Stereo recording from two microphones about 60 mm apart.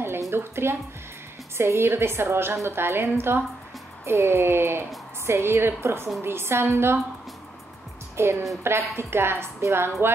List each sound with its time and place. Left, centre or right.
0.3 s a woman's voice: right
8.2 s a woman's voice: right